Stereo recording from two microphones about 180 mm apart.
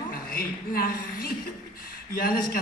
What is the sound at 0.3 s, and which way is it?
A man's voice, 55° left (ahead or behind).